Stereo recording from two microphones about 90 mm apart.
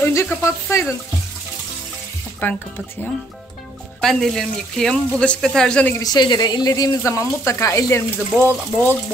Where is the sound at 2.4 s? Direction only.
20° left (ahead or behind).